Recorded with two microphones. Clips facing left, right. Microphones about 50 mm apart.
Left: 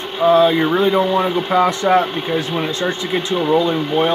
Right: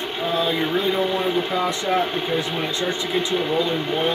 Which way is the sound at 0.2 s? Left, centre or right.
Left.